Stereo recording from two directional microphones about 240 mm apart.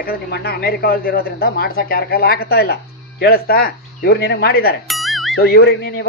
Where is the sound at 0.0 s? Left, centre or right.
Left.